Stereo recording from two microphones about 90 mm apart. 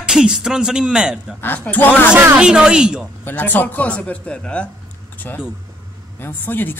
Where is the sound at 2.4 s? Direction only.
10° right (ahead or behind).